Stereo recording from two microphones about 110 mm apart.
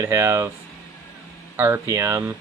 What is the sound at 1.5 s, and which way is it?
Speech, 25° right (ahead or behind).